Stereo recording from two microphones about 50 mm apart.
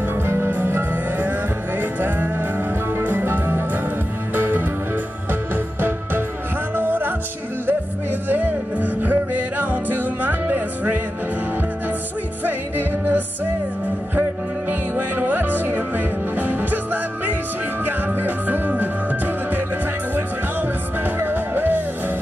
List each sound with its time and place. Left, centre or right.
0.1 s music: right
12.4 s music: right
14.7 s music: right